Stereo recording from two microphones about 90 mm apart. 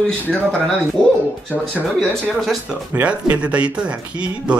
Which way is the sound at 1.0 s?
10° left (ahead or behind).